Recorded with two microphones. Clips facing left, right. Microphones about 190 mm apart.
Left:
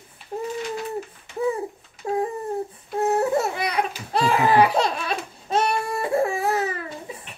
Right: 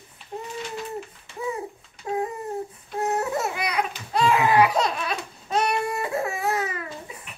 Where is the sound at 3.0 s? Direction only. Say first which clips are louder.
Left 4 dB; 30° left (ahead or behind).